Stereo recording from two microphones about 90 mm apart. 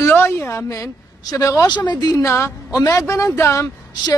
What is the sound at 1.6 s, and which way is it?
Speech, 55° left (ahead or behind).